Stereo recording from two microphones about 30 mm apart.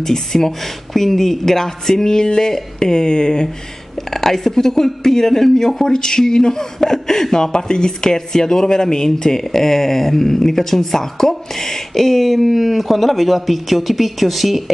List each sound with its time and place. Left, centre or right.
0.0 s a man's voice: centre
4.1 s a man's voice: centre
5.9 s a man's voice: left; by 14.6 s centre